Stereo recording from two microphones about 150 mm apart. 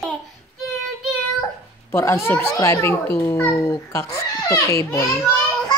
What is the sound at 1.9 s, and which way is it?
A child's voice, 20° left (ahead or behind).